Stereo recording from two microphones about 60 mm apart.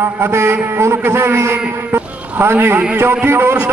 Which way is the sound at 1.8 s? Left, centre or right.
Right.